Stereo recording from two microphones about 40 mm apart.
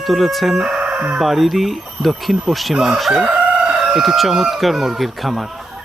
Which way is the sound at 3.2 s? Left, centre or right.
Right.